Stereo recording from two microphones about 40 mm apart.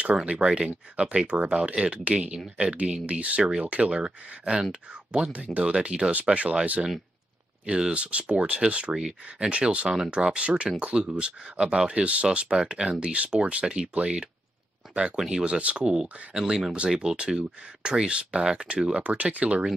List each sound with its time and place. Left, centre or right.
0.0 s speech: right
6.1 s speech: right
15.6 s speech: right
16.3 s speech: centre
19.0 s speech: right